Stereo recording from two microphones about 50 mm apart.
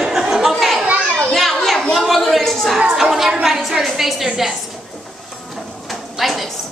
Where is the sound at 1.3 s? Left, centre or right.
Centre.